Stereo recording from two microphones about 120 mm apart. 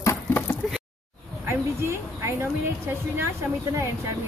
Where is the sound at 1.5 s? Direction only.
20° right (ahead or behind).